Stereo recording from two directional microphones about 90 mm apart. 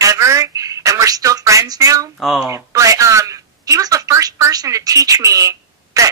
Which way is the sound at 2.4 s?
35° right (ahead or behind).